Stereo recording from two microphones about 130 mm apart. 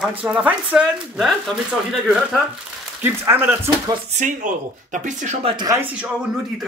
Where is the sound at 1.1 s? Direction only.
Centre (ahead or behind).